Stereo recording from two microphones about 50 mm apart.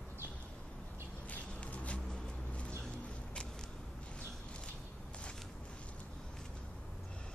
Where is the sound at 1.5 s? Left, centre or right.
Left.